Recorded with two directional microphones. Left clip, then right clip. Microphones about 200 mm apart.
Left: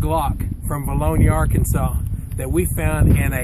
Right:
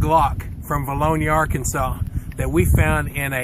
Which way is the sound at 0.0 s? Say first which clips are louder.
Right 5 dB; centre (ahead or behind).